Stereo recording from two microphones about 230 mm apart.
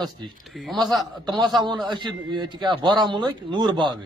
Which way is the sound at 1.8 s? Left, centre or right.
Centre.